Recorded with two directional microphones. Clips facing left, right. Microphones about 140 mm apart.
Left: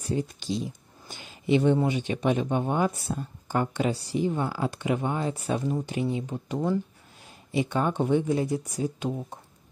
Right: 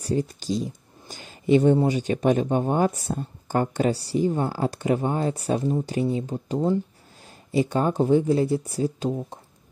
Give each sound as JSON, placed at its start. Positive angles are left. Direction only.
{"t": 0.0, "sound": "speech", "side_deg": -40}